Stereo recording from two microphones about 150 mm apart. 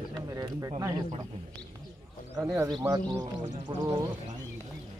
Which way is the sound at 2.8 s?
15° right (ahead or behind).